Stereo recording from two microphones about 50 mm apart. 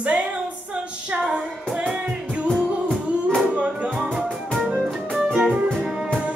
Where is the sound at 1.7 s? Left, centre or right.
Centre.